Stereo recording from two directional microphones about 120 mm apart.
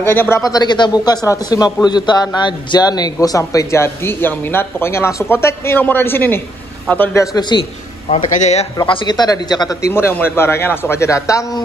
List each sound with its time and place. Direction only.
0.0 s a man's voice: 20° left (ahead or behind)
0.4 s a man's voice: 35° left (ahead or behind)
7.2 s a man's voice: 35° left (ahead or behind)
8.1 s a man's voice: 75° left (ahead or behind)
8.7 s a man's voice: 40° left (ahead or behind)